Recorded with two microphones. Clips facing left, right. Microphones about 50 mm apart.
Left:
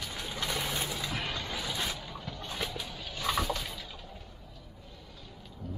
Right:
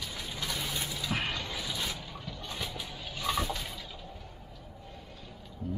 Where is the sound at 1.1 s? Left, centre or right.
Right.